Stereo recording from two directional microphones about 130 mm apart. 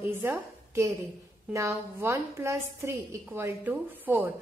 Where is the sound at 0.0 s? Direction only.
20° right (ahead or behind).